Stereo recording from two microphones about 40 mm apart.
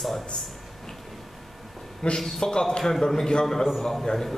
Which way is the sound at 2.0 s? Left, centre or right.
Centre.